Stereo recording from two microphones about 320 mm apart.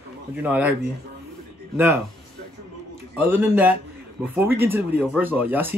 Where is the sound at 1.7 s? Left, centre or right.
Centre.